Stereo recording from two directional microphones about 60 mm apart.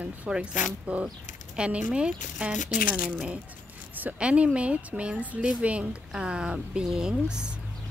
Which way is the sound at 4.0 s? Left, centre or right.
Right.